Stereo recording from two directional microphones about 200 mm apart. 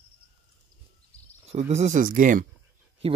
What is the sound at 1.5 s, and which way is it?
Speech, 35° right (ahead or behind).